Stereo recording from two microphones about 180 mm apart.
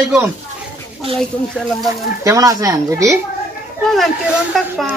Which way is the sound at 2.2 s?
20° right (ahead or behind).